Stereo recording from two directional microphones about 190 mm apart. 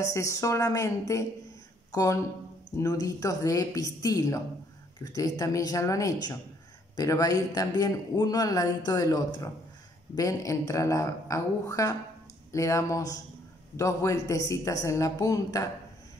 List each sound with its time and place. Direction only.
0.0 s a woman's voice: 15° left (ahead or behind)